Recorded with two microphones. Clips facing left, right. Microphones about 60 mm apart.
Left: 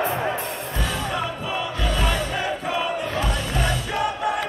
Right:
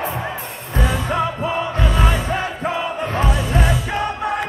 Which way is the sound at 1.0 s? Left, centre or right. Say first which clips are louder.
Right 6 dB; right.